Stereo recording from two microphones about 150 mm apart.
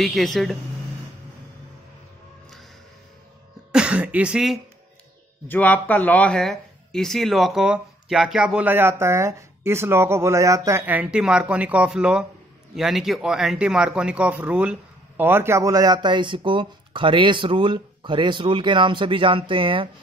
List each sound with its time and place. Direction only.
0.0 s speech: centre (ahead or behind)
3.7 s speech: 5° right (ahead or behind)
5.5 s speech: 10° left (ahead or behind); by 19.9 s 35° right (ahead or behind)